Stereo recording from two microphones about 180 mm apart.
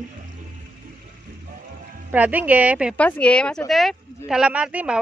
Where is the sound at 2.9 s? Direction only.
10° left (ahead or behind).